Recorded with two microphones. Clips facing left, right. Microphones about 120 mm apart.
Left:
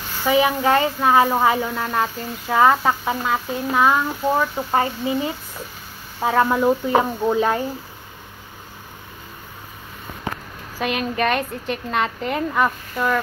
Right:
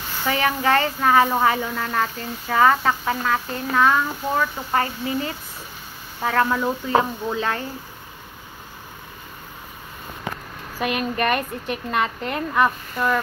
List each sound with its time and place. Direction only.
0.2 s a woman's voice: 5° left (ahead or behind)
6.2 s a woman's voice: 15° left (ahead or behind)
10.8 s a woman's voice: centre (ahead or behind)